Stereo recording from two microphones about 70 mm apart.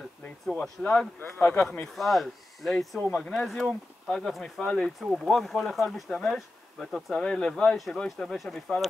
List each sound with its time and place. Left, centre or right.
0.8 s speech: centre
1.2 s speech: left
2.0 s speech: centre
3.0 s speech: centre
7.7 s speech: centre